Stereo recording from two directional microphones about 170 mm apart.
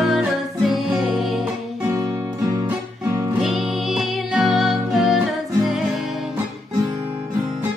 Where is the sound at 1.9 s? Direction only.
20° right (ahead or behind); by 5.8 s centre (ahead or behind).